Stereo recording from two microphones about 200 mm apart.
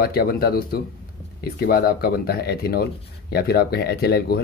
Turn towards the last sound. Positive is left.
turn(degrees=50)  # may be behind; listen again after turning